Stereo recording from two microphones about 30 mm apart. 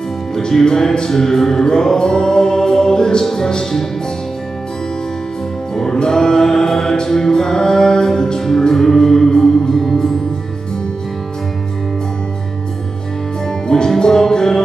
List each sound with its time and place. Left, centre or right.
0.5 s music: centre
5.9 s music: left
9.8 s music: centre
13.5 s music: left